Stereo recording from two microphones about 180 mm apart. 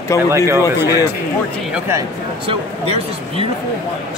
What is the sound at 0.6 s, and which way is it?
Speech, 20° left (ahead or behind).